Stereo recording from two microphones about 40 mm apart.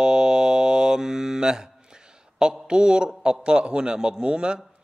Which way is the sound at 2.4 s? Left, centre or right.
Centre.